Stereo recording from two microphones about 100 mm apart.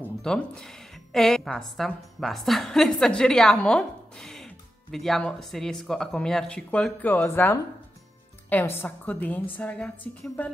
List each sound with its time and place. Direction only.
0.2 s a woman's voice: 5° left (ahead or behind)